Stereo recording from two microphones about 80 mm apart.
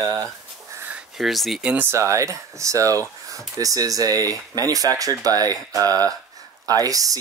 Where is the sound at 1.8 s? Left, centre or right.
Right.